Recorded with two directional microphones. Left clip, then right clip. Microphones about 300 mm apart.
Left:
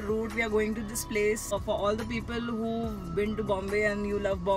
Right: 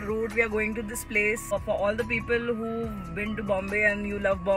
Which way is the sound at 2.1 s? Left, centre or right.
Right.